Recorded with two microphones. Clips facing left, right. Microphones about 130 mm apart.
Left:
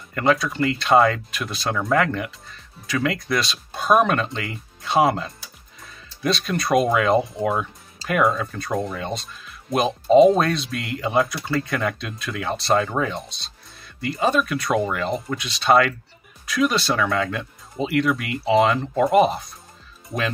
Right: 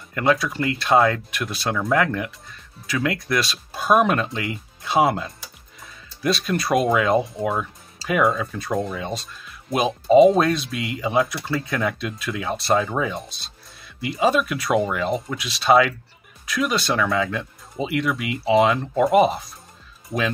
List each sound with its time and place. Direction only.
0.1 s speech: 5° right (ahead or behind)